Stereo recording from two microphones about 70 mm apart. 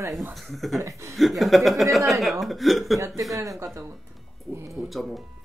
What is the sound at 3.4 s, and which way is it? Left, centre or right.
Speech, right.